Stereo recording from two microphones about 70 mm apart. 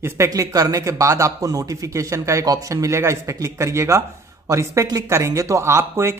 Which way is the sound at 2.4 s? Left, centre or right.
Right.